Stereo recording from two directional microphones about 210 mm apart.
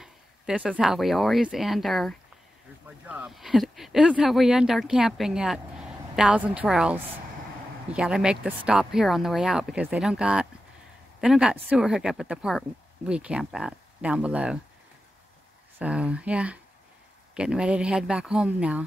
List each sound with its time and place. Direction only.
0.0 s speech: 5° right (ahead or behind)
15.8 s speech: 5° right (ahead or behind)